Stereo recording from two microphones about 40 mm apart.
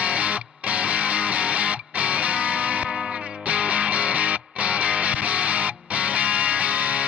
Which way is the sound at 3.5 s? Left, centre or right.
Right.